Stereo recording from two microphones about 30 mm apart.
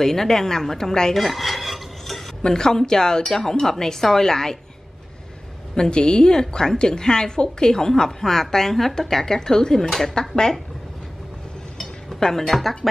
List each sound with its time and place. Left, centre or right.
0.0 s a woman's voice: centre
1.1 s dishes: centre
2.4 s a woman's voice: left
3.6 s a woman's voice: centre
5.8 s a woman's voice: left
9.8 s a woman's voice: centre
11.8 s a sound: centre